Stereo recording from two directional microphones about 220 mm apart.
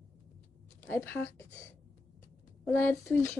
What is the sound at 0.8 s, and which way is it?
Speech, 10° left (ahead or behind).